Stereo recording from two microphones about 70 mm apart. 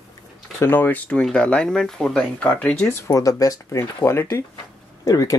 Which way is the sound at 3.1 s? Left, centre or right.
Left.